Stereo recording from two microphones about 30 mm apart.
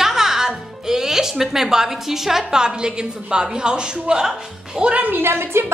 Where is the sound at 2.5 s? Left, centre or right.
Right.